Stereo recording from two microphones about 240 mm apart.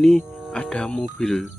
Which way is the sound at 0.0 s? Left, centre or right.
Centre.